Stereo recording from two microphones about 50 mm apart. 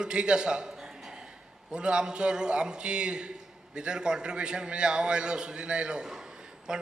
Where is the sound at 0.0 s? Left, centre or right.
Centre.